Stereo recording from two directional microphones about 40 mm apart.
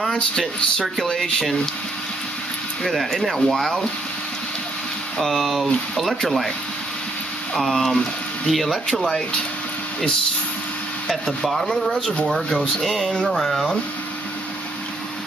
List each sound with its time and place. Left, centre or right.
0.1 s speech: centre
2.8 s speech: centre
5.2 s speech: centre
7.5 s speech: centre
11.1 s speech: centre
13.0 s speech: left
13.3 s speech: centre